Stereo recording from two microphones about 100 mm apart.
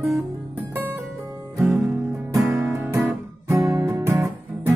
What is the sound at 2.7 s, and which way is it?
Guitar, 25° right (ahead or behind).